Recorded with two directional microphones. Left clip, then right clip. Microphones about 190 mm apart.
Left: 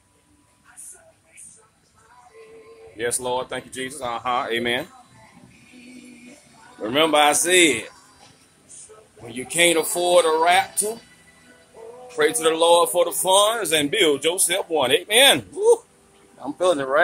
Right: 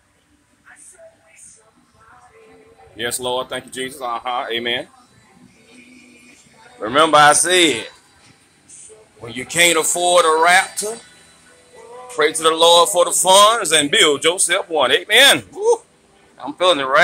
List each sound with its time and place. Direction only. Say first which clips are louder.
3.0 s speech: right 3 dB; 25° right (ahead or behind)
4.1 s speech: right 1 dB; 5° right (ahead or behind)
6.8 s a man's voice: right 6 dB; 5° left (ahead or behind)
9.3 s a man's voice: right 4 dB; 5° left (ahead or behind)
12.2 s a man's voice: right 4 dB; 15° left (ahead or behind)
16.5 s a man's voice: right 5 dB; 15° left (ahead or behind)